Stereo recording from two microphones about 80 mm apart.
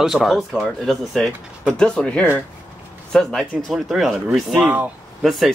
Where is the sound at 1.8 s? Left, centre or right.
Centre.